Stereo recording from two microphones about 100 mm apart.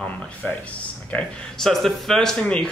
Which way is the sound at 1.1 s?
15° left (ahead or behind).